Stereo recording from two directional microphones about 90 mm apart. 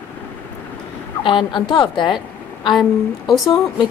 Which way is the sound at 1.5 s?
60° left (ahead or behind).